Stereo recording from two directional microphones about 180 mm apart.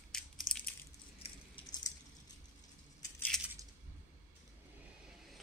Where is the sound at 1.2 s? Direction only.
25° left (ahead or behind).